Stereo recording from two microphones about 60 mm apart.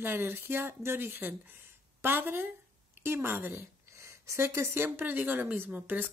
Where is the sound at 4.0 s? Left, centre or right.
Right.